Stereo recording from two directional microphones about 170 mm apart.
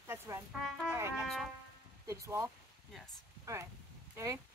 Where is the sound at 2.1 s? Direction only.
15° right (ahead or behind).